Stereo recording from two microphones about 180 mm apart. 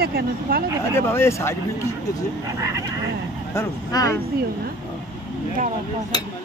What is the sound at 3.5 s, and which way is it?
Speech, 20° left (ahead or behind).